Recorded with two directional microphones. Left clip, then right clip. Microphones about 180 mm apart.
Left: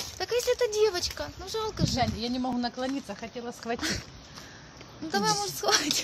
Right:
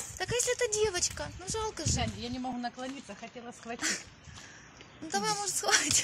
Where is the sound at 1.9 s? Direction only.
50° left (ahead or behind).